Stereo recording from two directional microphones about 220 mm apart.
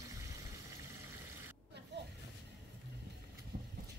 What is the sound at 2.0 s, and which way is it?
Vehicle, 50° right (ahead or behind).